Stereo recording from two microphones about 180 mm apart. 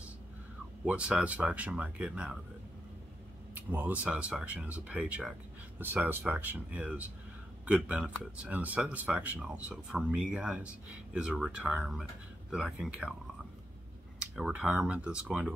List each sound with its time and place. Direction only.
0.8 s speech: 5° right (ahead or behind)
3.5 s speech: 10° right (ahead or behind)
14.2 s speech: 5° right (ahead or behind)